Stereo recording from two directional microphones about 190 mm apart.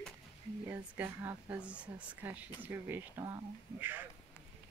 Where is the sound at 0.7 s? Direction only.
10° right (ahead or behind).